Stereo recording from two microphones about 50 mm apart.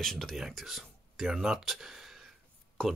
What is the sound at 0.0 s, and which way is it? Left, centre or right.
Speech, centre.